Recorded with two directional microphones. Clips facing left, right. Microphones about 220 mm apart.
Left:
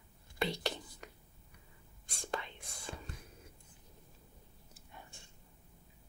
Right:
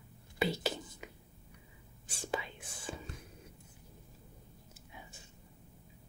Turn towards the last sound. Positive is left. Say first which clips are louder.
# right 2 dB
turn(degrees=-5)  # may be behind; listen again after turning